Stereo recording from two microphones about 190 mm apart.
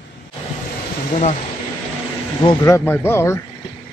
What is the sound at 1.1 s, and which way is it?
Speech, 40° left (ahead or behind).